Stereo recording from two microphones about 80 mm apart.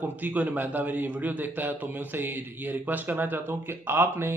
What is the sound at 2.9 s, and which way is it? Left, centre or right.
Speech, right.